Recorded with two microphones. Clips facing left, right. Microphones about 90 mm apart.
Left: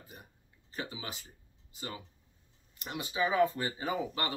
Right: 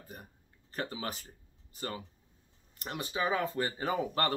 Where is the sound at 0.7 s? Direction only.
45° right (ahead or behind).